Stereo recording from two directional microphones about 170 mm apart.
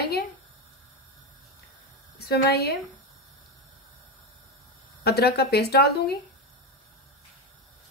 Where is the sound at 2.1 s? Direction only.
70° left (ahead or behind).